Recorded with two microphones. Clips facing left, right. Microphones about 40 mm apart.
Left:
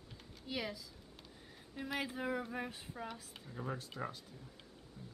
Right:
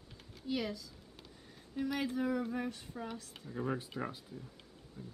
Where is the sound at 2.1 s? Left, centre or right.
Left.